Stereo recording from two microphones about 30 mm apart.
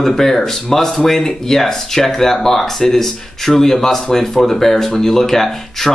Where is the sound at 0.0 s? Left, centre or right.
Centre.